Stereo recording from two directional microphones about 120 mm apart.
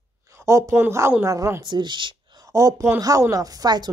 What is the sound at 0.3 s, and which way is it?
Speech, 25° right (ahead or behind).